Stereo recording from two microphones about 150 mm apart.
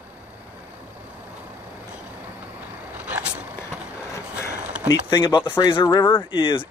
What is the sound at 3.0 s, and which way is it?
Vehicle, 10° right (ahead or behind).